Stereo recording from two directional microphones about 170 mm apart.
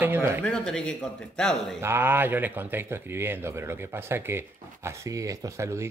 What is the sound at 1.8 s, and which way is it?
Speech, 15° right (ahead or behind).